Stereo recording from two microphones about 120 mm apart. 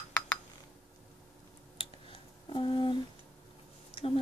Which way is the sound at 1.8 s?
50° left (ahead or behind).